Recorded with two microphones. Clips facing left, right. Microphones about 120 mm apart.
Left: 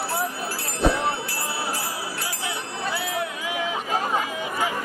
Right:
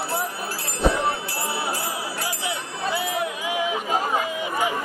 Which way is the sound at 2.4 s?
20° right (ahead or behind).